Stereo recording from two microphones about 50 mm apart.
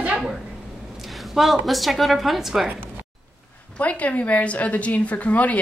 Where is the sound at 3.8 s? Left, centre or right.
Left.